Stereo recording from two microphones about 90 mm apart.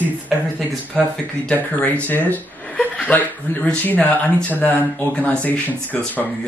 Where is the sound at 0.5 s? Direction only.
10° left (ahead or behind).